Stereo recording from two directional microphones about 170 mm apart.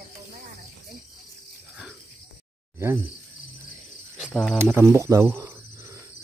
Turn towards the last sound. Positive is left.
turn(degrees=-15)  # may be behind; listen again after turning